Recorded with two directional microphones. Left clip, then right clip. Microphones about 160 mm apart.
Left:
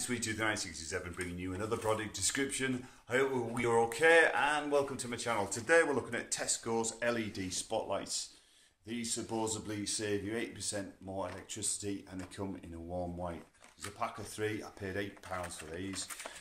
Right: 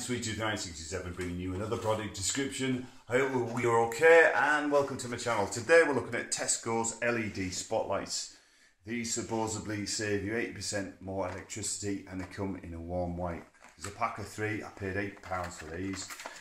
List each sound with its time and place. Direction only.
0.4 s speech: 15° left (ahead or behind)
4.0 s speech: 30° left (ahead or behind)
5.7 s speech: 10° left (ahead or behind)
6.0 s speech: 25° left (ahead or behind)
7.0 s speech: centre (ahead or behind)
14.6 s speech: 10° left (ahead or behind)